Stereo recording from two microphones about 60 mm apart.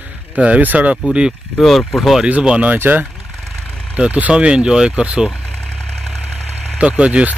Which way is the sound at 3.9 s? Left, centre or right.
Right.